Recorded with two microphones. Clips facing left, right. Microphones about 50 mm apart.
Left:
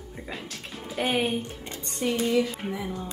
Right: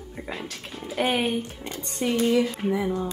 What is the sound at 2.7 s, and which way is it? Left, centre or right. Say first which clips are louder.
Speech: right 7 dB; right.